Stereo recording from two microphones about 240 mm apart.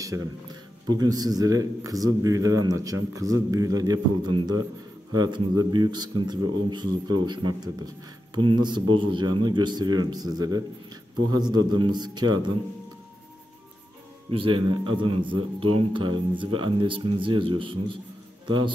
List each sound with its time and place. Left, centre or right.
0.0 s a man's voice: centre
14.3 s speech: right